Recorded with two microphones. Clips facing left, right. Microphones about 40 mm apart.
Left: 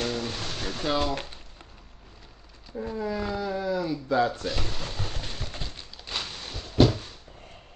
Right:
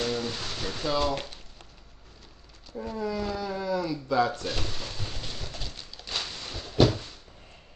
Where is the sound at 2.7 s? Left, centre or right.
Centre.